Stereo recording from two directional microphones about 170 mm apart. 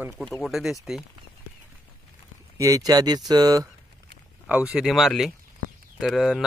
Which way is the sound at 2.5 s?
20° right (ahead or behind).